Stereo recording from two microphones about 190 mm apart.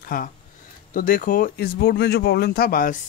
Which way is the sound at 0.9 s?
45° left (ahead or behind).